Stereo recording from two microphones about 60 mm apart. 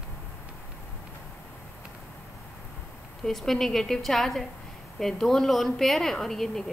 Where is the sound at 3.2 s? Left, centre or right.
Centre.